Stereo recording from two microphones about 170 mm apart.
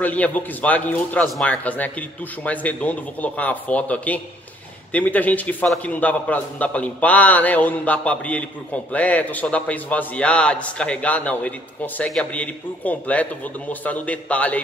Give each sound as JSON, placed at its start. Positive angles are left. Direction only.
{"t": 0.0, "sound": "a man's voice", "side_deg": 10}